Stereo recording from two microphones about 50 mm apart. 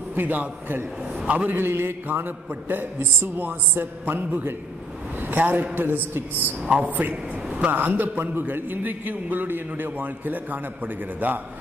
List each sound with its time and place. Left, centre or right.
0.1 s a man's voice: right
1.2 s a man's voice: right
1.5 s a man's voice: right